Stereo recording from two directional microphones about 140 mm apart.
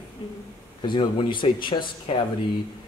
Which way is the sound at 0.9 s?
35° left (ahead or behind).